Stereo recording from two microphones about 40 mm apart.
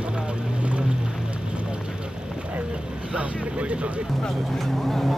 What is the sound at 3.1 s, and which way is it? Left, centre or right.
Vehicle, right.